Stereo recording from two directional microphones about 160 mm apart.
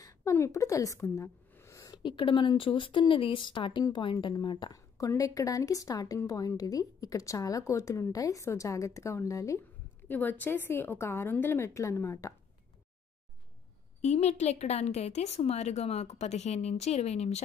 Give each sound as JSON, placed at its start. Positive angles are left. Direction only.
{"t": 0.0, "sound": "a sound", "side_deg": 20}
{"t": 2.0, "sound": "a woman's voice", "side_deg": 30}
{"t": 14.0, "sound": "a woman's voice", "side_deg": 45}